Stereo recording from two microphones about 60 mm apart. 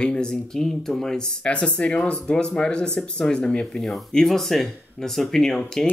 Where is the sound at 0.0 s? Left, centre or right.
Centre.